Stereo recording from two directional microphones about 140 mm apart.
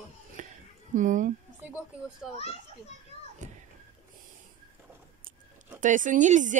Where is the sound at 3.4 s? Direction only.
55° right (ahead or behind).